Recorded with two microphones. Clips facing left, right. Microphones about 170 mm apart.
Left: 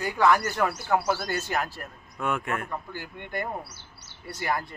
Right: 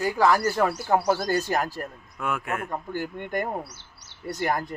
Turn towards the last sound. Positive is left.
turn(degrees=-45)  # may be behind; listen again after turning